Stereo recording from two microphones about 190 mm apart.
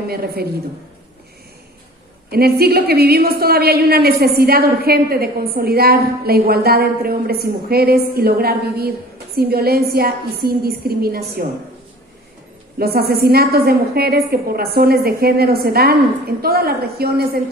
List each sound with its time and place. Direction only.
0.1 s a woman's voice: 55° right (ahead or behind)
2.3 s a woman's voice: 55° right (ahead or behind)
12.7 s a woman's voice: 55° right (ahead or behind)